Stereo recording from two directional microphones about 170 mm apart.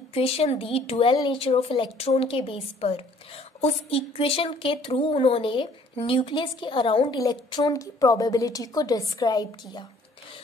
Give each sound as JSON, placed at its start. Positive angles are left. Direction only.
{"t": 0.1, "sound": "a woman's voice", "side_deg": 35}